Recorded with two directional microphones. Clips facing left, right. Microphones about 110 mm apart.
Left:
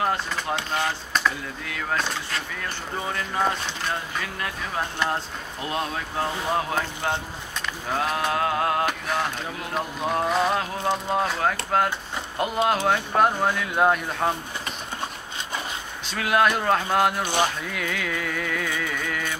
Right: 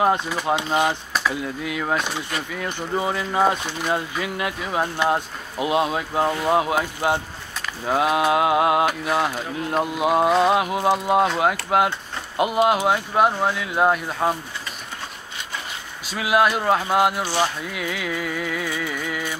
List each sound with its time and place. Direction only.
0.5 s speech: 15° right (ahead or behind)
16.1 s speech: 5° right (ahead or behind)
17.2 s speech: 20° left (ahead or behind)
17.6 s music: 10° right (ahead or behind)